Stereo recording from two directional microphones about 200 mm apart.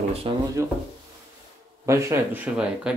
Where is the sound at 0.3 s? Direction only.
25° right (ahead or behind).